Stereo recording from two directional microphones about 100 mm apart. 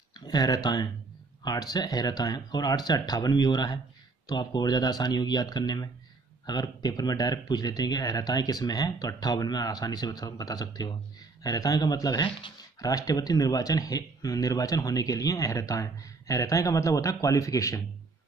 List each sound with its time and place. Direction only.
0.1 s speech: 40° left (ahead or behind)
12.7 s speech: 40° left (ahead or behind)